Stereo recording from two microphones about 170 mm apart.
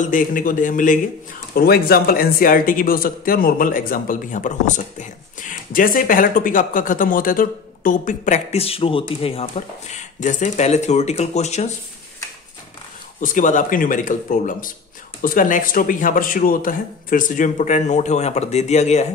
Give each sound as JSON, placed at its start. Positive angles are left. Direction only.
{"t": 0.1, "sound": "speech", "side_deg": 55}
{"t": 1.5, "sound": "speech", "side_deg": 65}
{"t": 13.2, "sound": "speech", "side_deg": 50}